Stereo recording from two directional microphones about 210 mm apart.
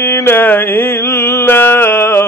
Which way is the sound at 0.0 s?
10° left (ahead or behind).